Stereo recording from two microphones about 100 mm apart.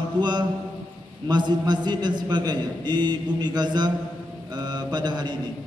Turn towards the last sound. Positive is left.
turn(degrees=-45)  # may be behind; listen again after turning